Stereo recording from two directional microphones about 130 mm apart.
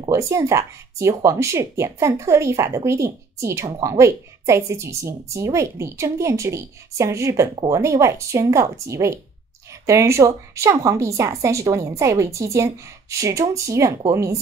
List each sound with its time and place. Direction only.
0.1 s speech: 25° right (ahead or behind)